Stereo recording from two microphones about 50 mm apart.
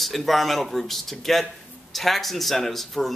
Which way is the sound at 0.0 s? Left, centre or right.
Centre.